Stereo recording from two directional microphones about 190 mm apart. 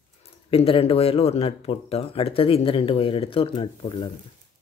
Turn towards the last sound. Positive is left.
turn(degrees=25)  # may be behind; listen again after turning